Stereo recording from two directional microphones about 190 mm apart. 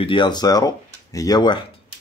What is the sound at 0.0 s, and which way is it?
Speech, 25° left (ahead or behind).